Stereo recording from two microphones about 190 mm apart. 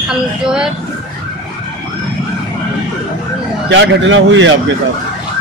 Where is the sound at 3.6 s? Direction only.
70° right (ahead or behind).